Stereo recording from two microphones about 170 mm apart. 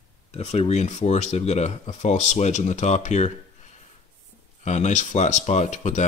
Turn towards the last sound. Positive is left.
turn(degrees=45)  # may be behind; listen again after turning